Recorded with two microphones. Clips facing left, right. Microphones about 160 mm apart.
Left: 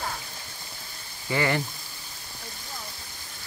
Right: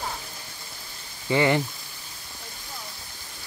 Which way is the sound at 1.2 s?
20° right (ahead or behind).